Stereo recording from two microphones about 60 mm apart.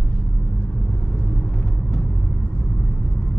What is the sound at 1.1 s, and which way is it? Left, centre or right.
Vehicle, centre.